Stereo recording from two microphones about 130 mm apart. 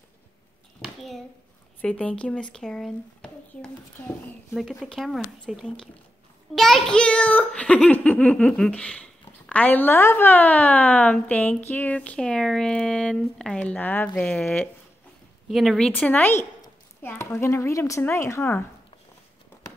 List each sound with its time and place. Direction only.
0.8 s hands: centre (ahead or behind)
1.8 s a woman's voice: 10° left (ahead or behind)
15.4 s speech: centre (ahead or behind)
15.9 s a woman's voice: 10° left (ahead or behind)